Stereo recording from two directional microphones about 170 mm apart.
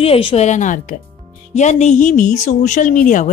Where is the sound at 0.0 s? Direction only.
35° left (ahead or behind).